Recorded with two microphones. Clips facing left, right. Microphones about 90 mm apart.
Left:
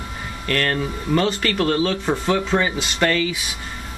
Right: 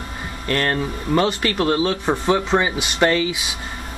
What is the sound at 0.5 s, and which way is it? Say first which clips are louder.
Speech: right 1 dB; 20° right (ahead or behind).